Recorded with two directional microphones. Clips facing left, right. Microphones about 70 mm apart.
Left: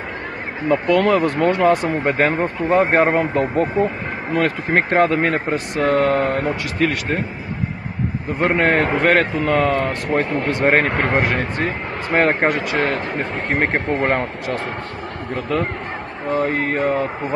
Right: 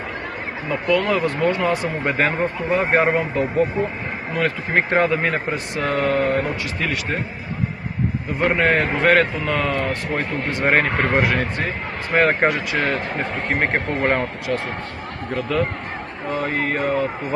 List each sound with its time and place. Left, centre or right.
0.7 s a man's voice: left
8.4 s a man's voice: left
13.6 s speech: left
16.3 s a man's voice: left